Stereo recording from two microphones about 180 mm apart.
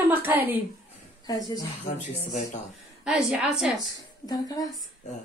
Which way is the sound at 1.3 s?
20° left (ahead or behind).